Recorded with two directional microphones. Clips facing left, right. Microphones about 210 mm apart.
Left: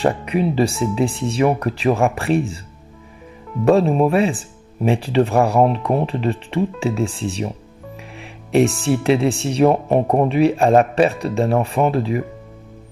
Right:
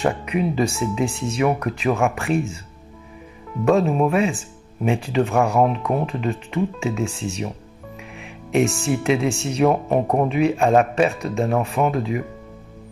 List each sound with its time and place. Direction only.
0.0 s speech: 35° left (ahead or behind)
3.6 s speech: 35° left (ahead or behind)